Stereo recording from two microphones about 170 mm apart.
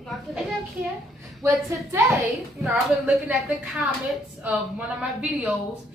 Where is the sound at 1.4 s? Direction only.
20° right (ahead or behind).